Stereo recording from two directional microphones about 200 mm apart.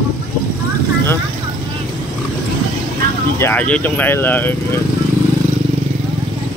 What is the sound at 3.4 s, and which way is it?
Speech, 10° left (ahead or behind).